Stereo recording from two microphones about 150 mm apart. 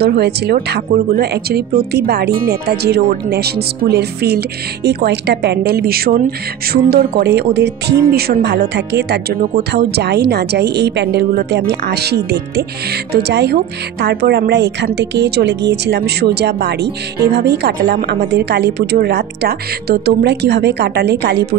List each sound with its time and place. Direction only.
0.0 s speech: 90° right